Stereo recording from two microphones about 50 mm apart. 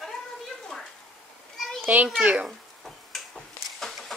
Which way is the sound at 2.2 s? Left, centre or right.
Right.